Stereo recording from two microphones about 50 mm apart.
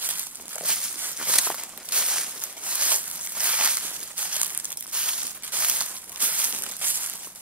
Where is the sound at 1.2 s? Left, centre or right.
Right.